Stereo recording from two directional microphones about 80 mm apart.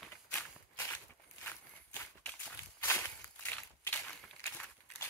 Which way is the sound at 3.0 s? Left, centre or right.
Left.